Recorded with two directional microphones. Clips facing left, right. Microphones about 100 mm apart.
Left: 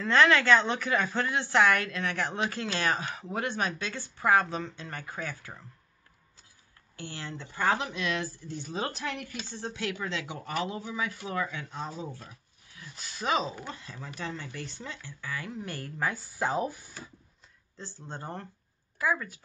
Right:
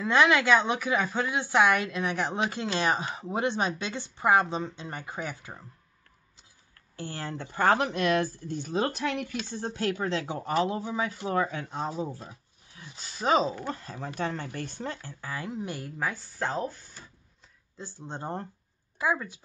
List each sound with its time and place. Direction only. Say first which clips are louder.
0.0 s speech: even; 15° right (ahead or behind)
7.0 s speech: right 4 dB; 40° right (ahead or behind); by 9.3 s 65° right (ahead or behind)
9.7 s speech: right 5 dB; 40° right (ahead or behind)
12.2 s a sound: right 4 dB; 25° right (ahead or behind)
13.0 s speech: right 5 dB; 35° right (ahead or behind)
15.5 s a woman's voice: right 3 dB; 15° right (ahead or behind)
16.0 s speech: left 2 dB; centre (ahead or behind)
17.7 s speech: right 3 dB; 15° right (ahead or behind)